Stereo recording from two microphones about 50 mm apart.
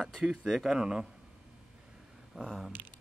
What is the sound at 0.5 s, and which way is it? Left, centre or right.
Speech, centre.